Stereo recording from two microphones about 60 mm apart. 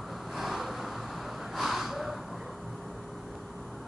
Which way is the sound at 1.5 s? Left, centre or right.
Centre.